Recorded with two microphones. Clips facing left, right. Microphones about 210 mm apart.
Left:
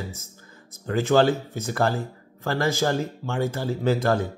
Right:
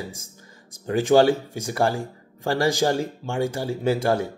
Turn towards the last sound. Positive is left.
turn(degrees=-10)  # may be behind; listen again after turning